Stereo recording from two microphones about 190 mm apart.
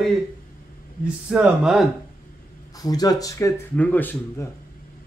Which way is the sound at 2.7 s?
20° left (ahead or behind).